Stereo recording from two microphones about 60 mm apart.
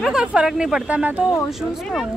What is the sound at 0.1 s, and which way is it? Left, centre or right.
Speech, centre.